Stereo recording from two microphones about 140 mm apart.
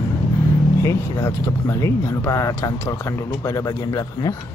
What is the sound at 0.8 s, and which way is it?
Speech, 20° left (ahead or behind).